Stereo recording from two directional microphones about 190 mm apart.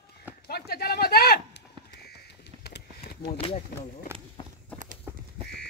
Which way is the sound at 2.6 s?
55° left (ahead or behind).